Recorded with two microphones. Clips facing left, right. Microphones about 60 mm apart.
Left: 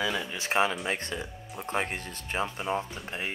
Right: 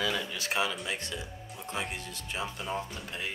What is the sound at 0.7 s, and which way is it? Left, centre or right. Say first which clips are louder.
Speech: left 4 dB; left.